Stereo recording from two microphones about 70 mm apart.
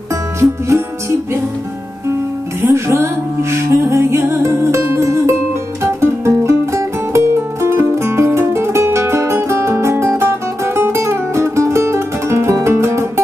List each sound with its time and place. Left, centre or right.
0.4 s music: right
2.7 s music: right